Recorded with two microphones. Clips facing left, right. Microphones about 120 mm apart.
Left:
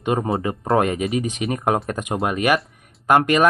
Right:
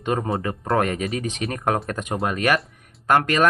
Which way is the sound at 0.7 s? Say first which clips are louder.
Left 3 dB; 20° left (ahead or behind).